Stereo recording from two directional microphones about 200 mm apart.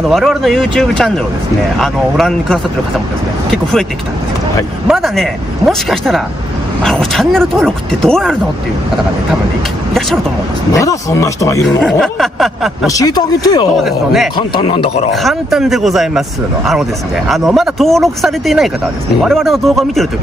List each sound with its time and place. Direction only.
0.1 s speech: centre (ahead or behind)
4.8 s speech: centre (ahead or behind)
10.7 s speech: 15° left (ahead or behind)
11.6 s speech: centre (ahead or behind)
12.8 s a man's voice: 15° left (ahead or behind)
13.8 s speech: centre (ahead or behind)
14.3 s a man's voice: 25° left (ahead or behind)
15.1 s speech: centre (ahead or behind)